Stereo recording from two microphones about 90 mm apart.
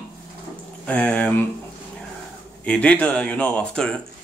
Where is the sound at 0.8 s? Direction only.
15° left (ahead or behind).